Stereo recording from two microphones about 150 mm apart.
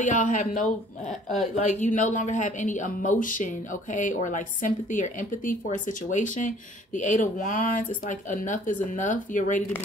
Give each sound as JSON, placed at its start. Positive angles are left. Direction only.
{"t": 0.0, "sound": "a woman's voice", "side_deg": 55}